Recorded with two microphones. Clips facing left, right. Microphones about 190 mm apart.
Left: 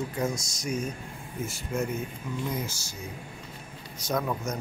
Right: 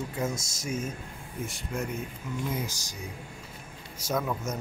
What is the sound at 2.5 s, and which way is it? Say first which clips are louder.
Speech: even; 15° right (ahead or behind).